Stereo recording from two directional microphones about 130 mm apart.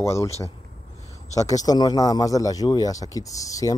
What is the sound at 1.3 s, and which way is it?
Speech, 25° left (ahead or behind).